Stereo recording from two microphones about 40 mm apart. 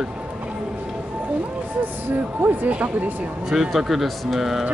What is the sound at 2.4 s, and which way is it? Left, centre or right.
Speech, right.